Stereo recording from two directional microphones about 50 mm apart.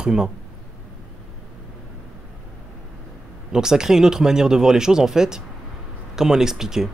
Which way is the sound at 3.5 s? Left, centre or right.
Centre.